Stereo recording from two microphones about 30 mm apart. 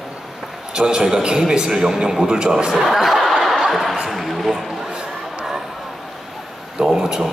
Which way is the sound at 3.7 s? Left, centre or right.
Centre.